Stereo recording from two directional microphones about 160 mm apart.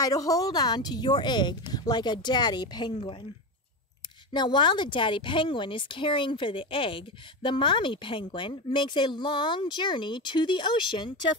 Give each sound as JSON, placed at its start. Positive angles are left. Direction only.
{"t": 0.0, "sound": "a woman's voice", "side_deg": 20}
{"t": 4.3, "sound": "speech", "side_deg": 30}